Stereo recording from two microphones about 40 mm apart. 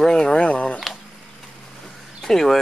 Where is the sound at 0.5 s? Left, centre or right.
Left.